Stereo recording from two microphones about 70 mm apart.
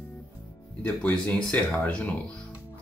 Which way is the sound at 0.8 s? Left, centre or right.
Left.